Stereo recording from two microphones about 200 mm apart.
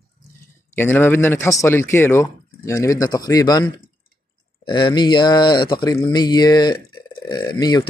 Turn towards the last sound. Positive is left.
turn(degrees=20)  # may be behind; listen again after turning